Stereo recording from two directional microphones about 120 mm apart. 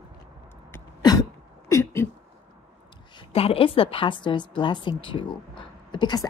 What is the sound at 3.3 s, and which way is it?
A woman's voice, 50° left (ahead or behind).